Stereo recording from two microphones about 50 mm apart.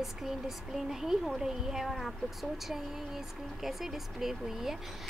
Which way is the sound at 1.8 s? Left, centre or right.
Centre.